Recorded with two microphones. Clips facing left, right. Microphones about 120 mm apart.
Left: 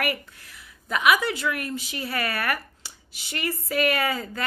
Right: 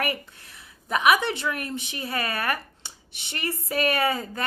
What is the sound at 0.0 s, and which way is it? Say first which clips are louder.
A woman's voice: left 1 dB; 25° right (ahead or behind).